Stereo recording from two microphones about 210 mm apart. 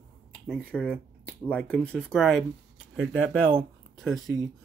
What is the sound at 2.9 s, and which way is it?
Speech, 70° right (ahead or behind).